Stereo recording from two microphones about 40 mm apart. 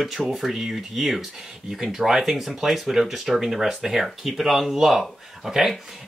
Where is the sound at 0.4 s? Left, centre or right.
Centre.